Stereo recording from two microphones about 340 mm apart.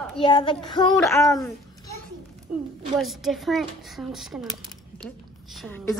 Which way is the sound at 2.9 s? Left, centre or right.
Centre.